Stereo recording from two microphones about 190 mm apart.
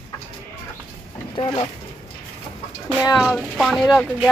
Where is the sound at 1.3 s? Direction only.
25° left (ahead or behind).